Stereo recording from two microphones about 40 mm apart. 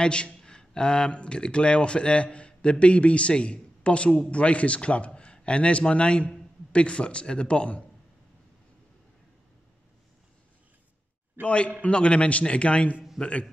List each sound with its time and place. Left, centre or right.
0.0 s a man's voice: left
11.4 s a man's voice: left